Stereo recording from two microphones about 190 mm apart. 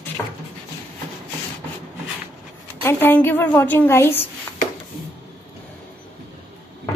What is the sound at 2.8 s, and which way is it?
A woman's voice, 10° left (ahead or behind).